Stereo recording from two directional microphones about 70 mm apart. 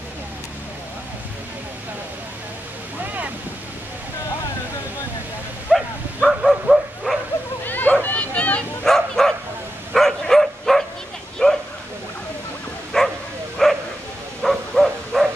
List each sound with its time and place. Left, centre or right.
5.7 s bow-wow: centre
6.2 s bow-wow: centre
7.6 s a sound: left
8.8 s bow-wow: centre
12.9 s bow-wow: centre
14.4 s dog: centre